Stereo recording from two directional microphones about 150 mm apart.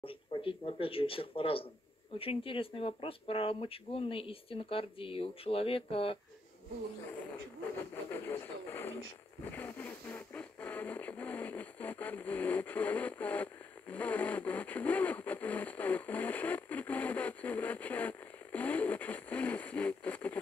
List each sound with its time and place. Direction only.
0.0 s speech: 35° left (ahead or behind)
8.1 s radio: 15° left (ahead or behind)